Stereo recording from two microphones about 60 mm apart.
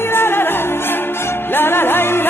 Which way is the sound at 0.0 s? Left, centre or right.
Left.